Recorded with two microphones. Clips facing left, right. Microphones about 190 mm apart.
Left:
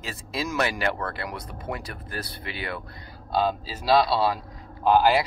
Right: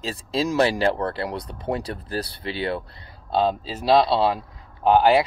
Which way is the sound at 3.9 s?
20° right (ahead or behind).